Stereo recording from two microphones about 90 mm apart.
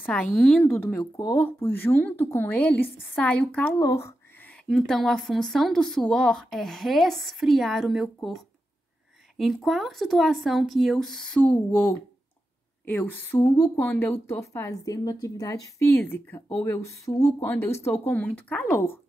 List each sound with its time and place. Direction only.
0.0 s a woman's voice: 10° left (ahead or behind)
0.7 s speech: 20° left (ahead or behind)
3.8 s a sound: 30° left (ahead or behind)
4.6 s a woman's voice: 5° left (ahead or behind); by 15.4 s 45° left (ahead or behind)
15.4 s speech: 30° left (ahead or behind)
17.1 s speech: 45° left (ahead or behind)
17.4 s speech: 25° left (ahead or behind)